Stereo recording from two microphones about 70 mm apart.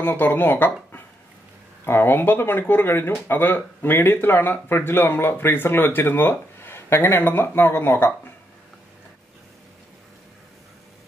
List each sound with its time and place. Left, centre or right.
0.0 s speech: left